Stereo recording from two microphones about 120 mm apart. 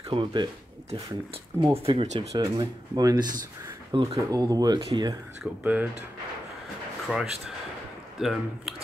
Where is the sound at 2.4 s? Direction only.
30° right (ahead or behind).